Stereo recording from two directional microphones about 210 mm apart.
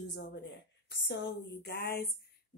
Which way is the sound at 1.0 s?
55° left (ahead or behind).